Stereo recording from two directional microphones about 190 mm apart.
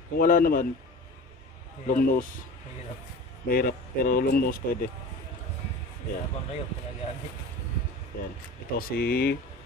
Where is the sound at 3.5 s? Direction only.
50° left (ahead or behind).